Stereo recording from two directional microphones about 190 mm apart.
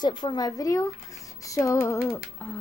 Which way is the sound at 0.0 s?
25° left (ahead or behind).